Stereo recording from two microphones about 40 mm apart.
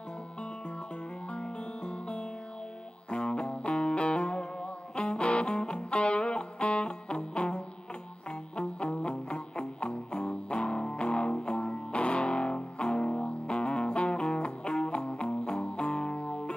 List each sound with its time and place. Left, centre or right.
1.3 s music: left